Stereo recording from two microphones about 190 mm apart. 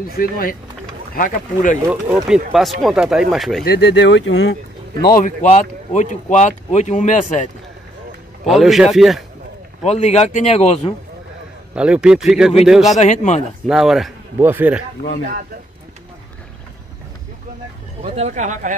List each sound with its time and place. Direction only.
0.1 s speech: 50° left (ahead or behind)
1.9 s speech: 5° right (ahead or behind)
3.6 s speech: 65° left (ahead or behind)
5.0 s speech: 45° left (ahead or behind)
8.5 s speech: centre (ahead or behind)
9.8 s speech: 35° left (ahead or behind)
11.7 s speech: 5° right (ahead or behind)
13.0 s speech: 40° left (ahead or behind)
13.7 s speech: centre (ahead or behind)
18.0 s speech: 35° right (ahead or behind)